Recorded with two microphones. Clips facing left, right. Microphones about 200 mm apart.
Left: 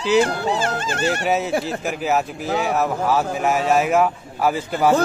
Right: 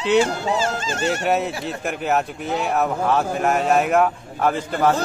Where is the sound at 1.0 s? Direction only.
Centre (ahead or behind).